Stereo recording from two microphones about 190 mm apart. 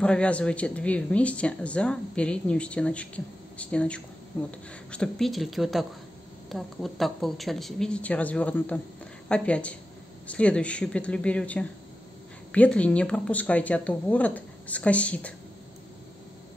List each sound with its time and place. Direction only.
0.0 s a woman's voice: 5° left (ahead or behind)